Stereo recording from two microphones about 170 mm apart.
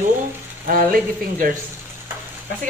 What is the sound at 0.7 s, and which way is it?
Speech, 55° right (ahead or behind).